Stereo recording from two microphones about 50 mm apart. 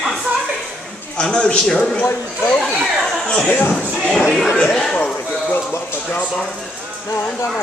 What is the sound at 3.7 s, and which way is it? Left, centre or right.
Speech, centre.